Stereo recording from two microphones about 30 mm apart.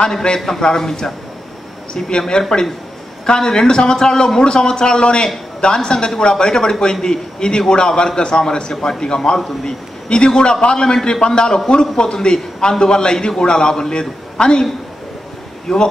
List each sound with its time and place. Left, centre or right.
0.6 s a man's voice: left
15.7 s speech: centre